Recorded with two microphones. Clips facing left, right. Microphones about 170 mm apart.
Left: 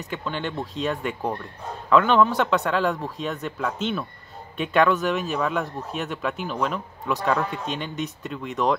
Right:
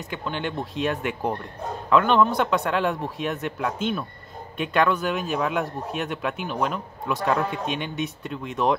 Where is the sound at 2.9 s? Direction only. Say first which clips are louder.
Right 1 dB; 15° right (ahead or behind).